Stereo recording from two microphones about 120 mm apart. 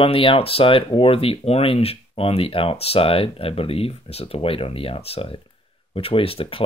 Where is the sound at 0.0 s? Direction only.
50° left (ahead or behind).